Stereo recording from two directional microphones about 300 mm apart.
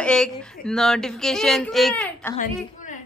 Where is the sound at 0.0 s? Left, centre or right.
Centre.